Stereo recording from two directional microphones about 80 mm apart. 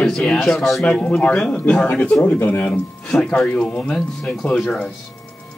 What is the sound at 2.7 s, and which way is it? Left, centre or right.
Speech, centre.